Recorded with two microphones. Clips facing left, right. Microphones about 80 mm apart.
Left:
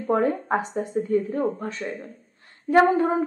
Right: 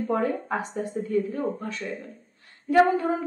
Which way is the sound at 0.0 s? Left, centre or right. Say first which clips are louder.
Left 3 dB; left.